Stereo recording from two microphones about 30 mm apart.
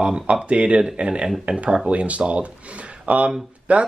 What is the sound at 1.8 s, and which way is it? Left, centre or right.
Speech, right.